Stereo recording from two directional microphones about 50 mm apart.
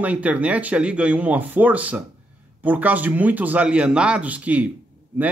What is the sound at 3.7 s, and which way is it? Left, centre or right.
Speech, right.